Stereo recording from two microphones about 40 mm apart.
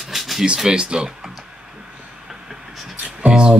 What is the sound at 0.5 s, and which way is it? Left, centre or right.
Speech, centre.